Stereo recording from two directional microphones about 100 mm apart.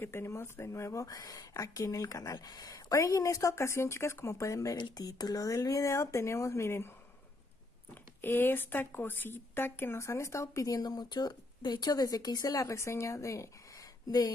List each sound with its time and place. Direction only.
0.0 s speech: 25° left (ahead or behind)
4.7 s speech: 45° left (ahead or behind); by 6.9 s 25° left (ahead or behind)
8.2 s speech: 20° left (ahead or behind); by 14.3 s 40° left (ahead or behind)